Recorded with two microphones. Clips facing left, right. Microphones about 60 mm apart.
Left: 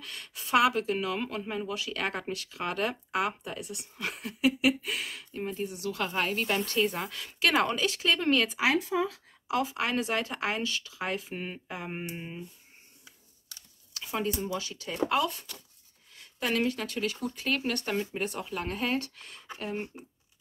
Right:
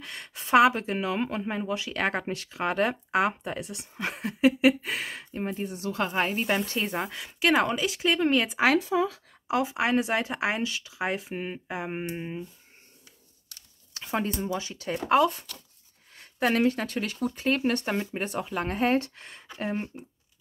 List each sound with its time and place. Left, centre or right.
0.0 s speech: right
7.2 s speech: centre
9.5 s speech: right
11.3 s speech: centre
11.7 s a sound: centre
13.9 s a sound: right
14.4 s speech: right